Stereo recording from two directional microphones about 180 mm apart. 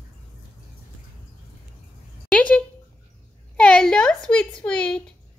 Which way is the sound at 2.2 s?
5° left (ahead or behind).